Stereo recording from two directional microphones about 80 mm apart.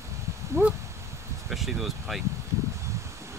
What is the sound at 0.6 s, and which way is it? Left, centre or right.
Dog, right.